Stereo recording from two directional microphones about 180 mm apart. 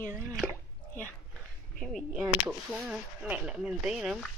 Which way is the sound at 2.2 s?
5° right (ahead or behind).